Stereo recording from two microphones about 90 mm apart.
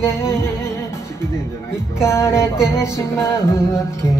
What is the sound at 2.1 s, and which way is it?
Music, 30° left (ahead or behind).